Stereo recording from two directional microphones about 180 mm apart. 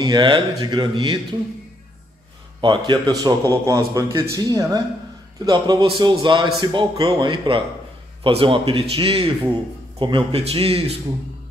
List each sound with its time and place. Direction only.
0.0 s speech: 25° right (ahead or behind)
2.6 s a man's voice: 25° right (ahead or behind)